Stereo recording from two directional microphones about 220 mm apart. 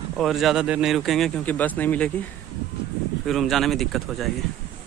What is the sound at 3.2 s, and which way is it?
Speech, centre (ahead or behind).